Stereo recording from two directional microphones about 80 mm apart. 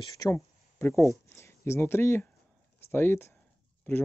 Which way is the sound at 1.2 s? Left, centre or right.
Left.